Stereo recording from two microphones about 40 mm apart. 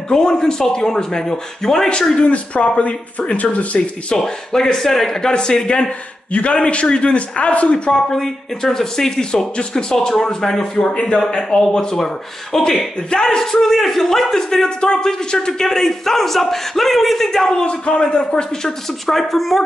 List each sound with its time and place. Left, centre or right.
0.1 s a man's voice: centre
2.1 s a man's voice: left
4.1 s a man's voice: centre
6.3 s a man's voice: left
7.9 s a man's voice: centre
10.6 s a man's voice: left; by 17.5 s centre
17.5 s a man's voice: left; by 19.6 s centre